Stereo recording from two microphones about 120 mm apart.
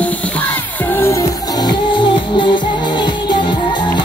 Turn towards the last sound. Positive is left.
turn(degrees=40)  # may be behind; listen again after turning